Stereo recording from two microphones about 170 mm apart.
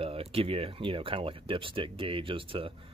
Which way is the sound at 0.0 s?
35° right (ahead or behind).